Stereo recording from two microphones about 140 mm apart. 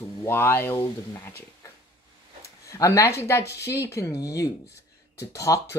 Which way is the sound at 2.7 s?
25° left (ahead or behind).